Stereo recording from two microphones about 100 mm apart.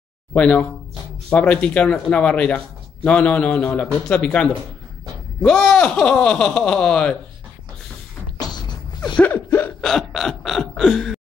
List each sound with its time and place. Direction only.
0.3 s a man's voice: 15° left (ahead or behind)
9.2 s gasp: 20° left (ahead or behind)
9.8 s a sound: 5° left (ahead or behind)